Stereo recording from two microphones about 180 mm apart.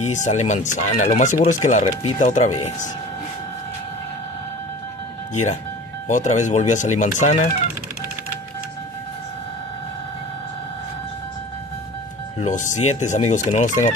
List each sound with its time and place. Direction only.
0.0 s speech: 40° left (ahead or behind)
5.3 s speech: 40° left (ahead or behind)
12.4 s speech: 45° left (ahead or behind)